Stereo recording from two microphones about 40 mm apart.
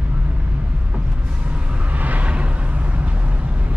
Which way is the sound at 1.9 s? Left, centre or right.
Right.